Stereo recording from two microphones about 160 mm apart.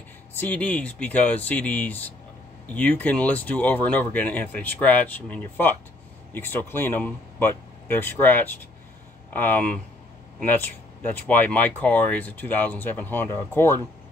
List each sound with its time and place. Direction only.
0.4 s speech: 10° left (ahead or behind)